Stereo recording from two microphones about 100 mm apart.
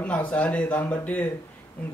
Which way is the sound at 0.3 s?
10° left (ahead or behind).